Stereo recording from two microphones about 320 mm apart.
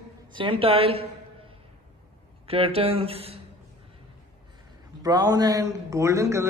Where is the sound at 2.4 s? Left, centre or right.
Centre.